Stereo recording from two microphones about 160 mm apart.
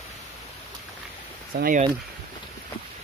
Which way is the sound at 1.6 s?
65° right (ahead or behind).